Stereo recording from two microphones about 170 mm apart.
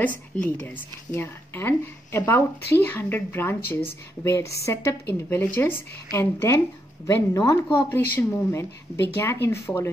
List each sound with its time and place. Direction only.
0.0 s speech: 10° left (ahead or behind)